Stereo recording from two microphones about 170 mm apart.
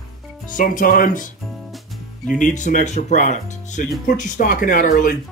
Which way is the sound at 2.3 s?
45° left (ahead or behind).